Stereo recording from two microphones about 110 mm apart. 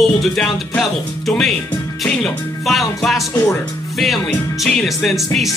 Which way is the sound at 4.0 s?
Centre (ahead or behind).